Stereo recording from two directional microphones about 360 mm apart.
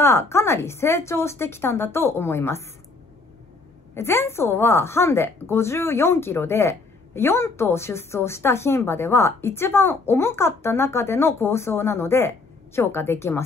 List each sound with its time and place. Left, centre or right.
0.0 s speech: centre
3.9 s speech: centre